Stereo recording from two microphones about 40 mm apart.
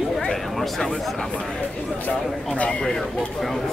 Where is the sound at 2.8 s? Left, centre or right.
Centre.